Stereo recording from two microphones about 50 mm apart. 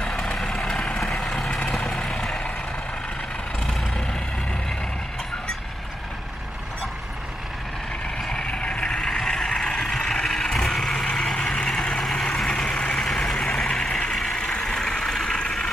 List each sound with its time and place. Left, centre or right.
0.0 s vehicle: centre
1.9 s vehicle: centre
8.3 s vehicle: centre